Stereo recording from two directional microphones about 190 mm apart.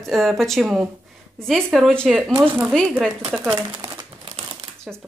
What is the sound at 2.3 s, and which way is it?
Speech, 10° right (ahead or behind).